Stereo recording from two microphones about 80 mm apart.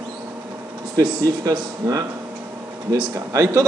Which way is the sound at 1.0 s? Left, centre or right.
Right.